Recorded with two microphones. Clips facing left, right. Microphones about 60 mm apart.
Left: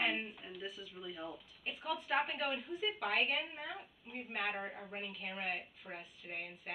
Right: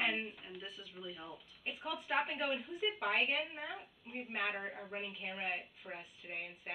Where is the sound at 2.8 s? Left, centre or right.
Right.